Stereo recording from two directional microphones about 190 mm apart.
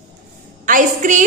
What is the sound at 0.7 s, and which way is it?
Speech, 45° right (ahead or behind).